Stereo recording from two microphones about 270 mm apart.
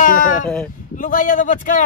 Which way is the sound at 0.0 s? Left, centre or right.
Left.